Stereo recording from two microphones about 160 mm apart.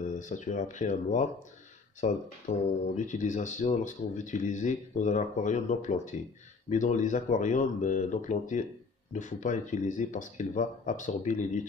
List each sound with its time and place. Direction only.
0.2 s speech: 50° left (ahead or behind)